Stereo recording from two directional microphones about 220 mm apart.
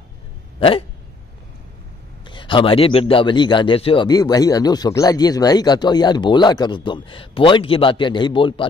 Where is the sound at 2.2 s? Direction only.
20° left (ahead or behind).